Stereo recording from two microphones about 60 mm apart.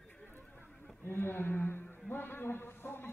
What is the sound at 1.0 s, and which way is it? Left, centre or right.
A man's voice, left.